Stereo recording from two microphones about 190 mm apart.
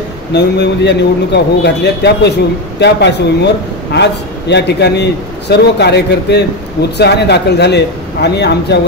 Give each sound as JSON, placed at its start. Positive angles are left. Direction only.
{"t": 0.3, "sound": "a man's voice", "side_deg": 65}